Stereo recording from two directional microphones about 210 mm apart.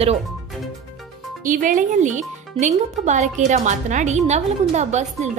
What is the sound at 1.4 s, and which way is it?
Speech, 40° right (ahead or behind).